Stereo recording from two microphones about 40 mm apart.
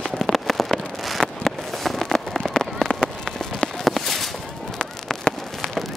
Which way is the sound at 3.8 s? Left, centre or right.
Centre.